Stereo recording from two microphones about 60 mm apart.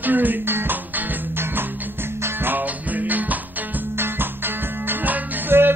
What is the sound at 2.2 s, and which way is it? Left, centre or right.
Music, right.